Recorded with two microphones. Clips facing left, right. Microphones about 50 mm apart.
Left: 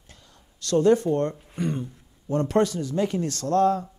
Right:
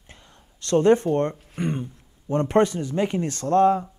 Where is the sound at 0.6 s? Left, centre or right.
Right.